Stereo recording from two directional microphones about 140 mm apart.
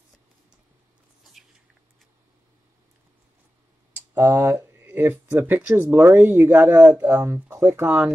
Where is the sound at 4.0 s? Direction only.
20° right (ahead or behind).